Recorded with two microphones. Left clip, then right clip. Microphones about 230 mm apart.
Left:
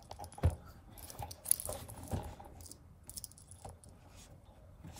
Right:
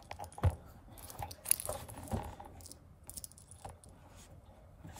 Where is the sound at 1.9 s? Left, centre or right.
Centre.